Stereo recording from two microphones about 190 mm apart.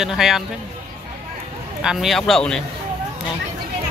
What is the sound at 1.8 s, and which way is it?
Speech, 5° right (ahead or behind).